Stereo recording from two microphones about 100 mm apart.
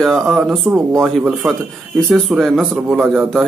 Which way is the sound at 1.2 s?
10° right (ahead or behind).